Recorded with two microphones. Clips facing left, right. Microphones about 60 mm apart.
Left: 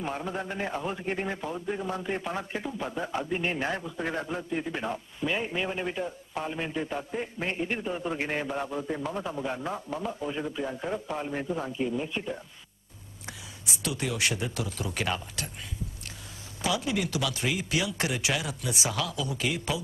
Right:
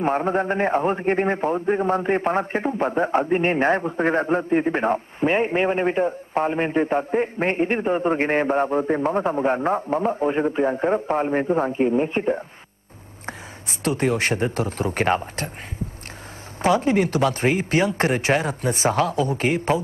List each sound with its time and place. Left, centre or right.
0.0 s a man's voice: right
13.7 s a man's voice: right